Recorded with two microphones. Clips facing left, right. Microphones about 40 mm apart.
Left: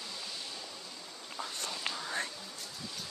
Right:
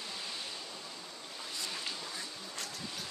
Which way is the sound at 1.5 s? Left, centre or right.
Left.